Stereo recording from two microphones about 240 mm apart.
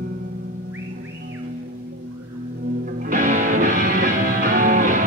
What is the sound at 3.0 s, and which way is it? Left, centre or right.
Music, right.